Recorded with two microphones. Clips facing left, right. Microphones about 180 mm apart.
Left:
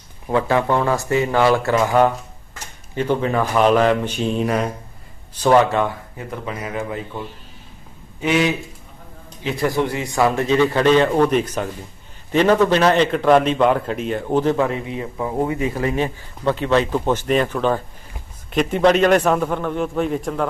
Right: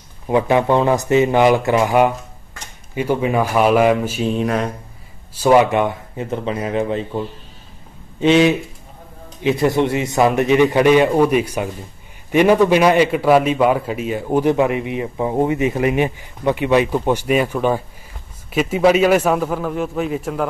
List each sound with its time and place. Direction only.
0.3 s a man's voice: 15° right (ahead or behind); by 4.7 s centre (ahead or behind)
5.3 s a man's voice: 10° right (ahead or behind)